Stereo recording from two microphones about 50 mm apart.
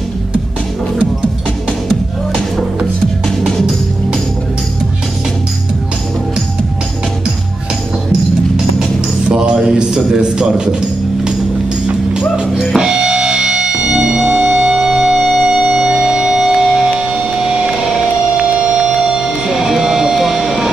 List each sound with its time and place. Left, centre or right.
9.3 s a man's voice: centre
12.7 s music: centre